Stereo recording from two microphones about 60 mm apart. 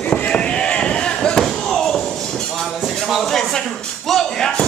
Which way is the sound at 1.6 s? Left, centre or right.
Centre.